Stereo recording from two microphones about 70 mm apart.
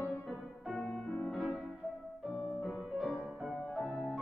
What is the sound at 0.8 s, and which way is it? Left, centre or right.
Piano, centre.